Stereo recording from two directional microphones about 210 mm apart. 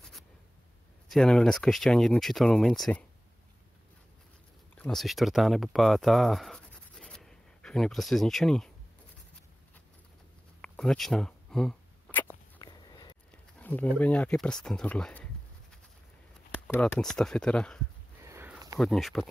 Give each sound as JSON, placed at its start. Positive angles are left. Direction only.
{"t": 1.0, "sound": "speech", "side_deg": 0}
{"t": 4.7, "sound": "speech", "side_deg": 0}
{"t": 10.6, "sound": "a sound", "side_deg": 0}
{"t": 12.5, "sound": "walk", "side_deg": 20}
{"t": 13.3, "sound": "speech", "side_deg": 5}
{"t": 16.5, "sound": "speech", "side_deg": 5}
{"t": 18.2, "sound": "a sound", "side_deg": -10}
{"t": 18.8, "sound": "speech", "side_deg": 0}